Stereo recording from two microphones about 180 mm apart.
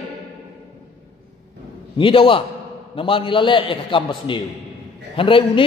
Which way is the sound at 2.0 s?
30° left (ahead or behind).